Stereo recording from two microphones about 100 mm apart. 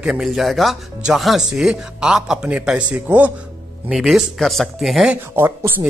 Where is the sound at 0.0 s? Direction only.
5° right (ahead or behind).